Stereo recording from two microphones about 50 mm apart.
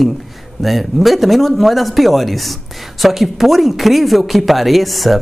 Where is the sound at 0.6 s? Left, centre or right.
Centre.